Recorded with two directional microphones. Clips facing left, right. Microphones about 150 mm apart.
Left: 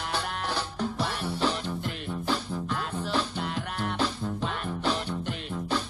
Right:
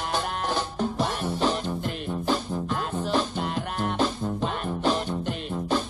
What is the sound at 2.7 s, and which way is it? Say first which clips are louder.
Music: right 4 dB; 45° right (ahead or behind).